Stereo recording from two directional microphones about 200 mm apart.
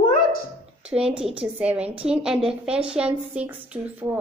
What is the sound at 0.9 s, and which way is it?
A woman's voice, 5° right (ahead or behind).